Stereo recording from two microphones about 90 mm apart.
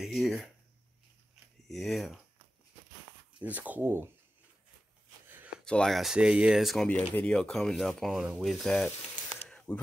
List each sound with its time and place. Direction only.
0.0 s speech: centre (ahead or behind)
1.7 s speech: centre (ahead or behind)
3.3 s speech: 15° right (ahead or behind)
5.7 s speech: 5° left (ahead or behind)
7.2 s speech: 10° left (ahead or behind)
9.5 s a sound: 10° left (ahead or behind)